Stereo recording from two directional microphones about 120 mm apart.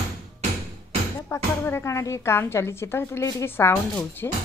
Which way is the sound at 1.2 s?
20° left (ahead or behind).